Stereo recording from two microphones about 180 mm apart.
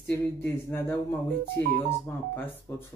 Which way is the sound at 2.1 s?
10° left (ahead or behind).